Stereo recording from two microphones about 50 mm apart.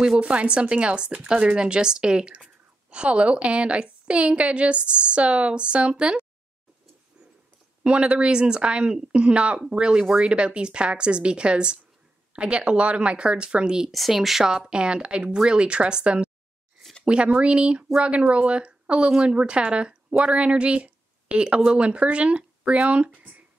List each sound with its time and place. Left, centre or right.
0.0 s speech: centre
7.8 s speech: right
13.9 s speech: centre
14.5 s speech: centre